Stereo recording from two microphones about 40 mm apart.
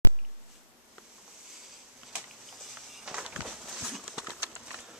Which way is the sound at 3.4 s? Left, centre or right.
Centre.